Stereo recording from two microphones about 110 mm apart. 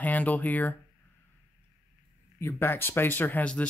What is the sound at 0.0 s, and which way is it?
Speech, 15° left (ahead or behind).